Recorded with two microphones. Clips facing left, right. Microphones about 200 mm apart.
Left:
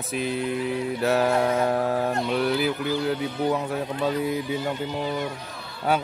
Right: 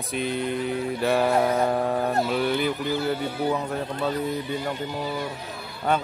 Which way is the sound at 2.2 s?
Centre (ahead or behind).